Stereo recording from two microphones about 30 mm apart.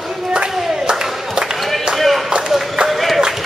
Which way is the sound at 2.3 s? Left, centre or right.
Right.